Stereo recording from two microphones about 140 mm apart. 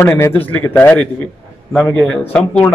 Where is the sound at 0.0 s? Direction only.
20° left (ahead or behind).